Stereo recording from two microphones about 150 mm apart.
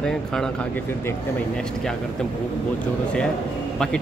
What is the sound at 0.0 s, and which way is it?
Speech, 5° left (ahead or behind).